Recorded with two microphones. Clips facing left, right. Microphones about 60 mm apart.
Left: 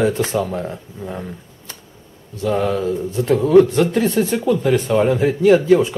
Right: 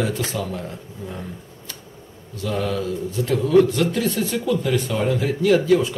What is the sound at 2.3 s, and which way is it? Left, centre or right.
A man's voice, left.